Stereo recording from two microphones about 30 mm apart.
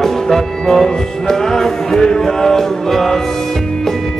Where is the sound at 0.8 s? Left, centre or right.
Centre.